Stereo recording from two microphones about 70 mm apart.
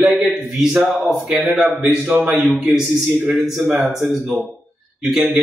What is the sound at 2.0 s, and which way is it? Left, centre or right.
Speech, centre.